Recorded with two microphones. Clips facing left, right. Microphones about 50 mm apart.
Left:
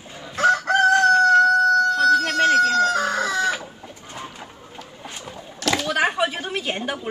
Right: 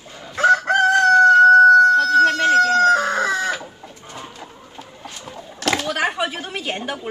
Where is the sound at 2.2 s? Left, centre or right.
Left.